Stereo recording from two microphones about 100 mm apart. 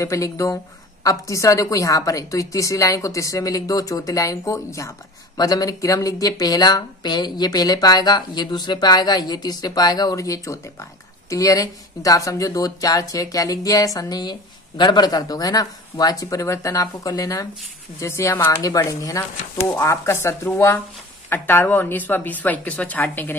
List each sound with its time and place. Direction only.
0.0 s a woman's voice: 30° left (ahead or behind)